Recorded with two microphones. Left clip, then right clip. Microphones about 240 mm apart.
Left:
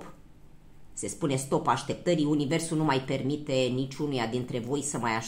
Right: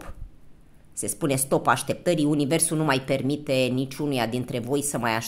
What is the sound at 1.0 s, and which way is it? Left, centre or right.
Speech, right.